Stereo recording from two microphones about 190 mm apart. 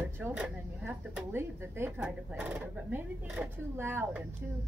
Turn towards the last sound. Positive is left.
turn(degrees=-10)  # may be behind; listen again after turning